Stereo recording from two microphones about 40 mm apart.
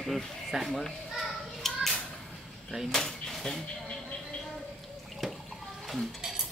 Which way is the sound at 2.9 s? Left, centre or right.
Centre.